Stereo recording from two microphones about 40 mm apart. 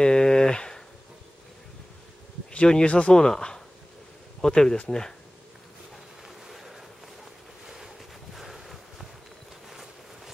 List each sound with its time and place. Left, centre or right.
0.0 s a sound: centre
2.7 s speech: left
3.2 s speech: centre
6.2 s vehicle: centre
7.6 s boat: centre
8.4 s a sound: centre